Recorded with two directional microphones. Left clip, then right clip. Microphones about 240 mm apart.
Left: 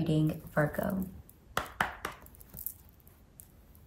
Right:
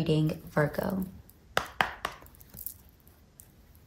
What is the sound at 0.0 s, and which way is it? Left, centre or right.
Speech, right.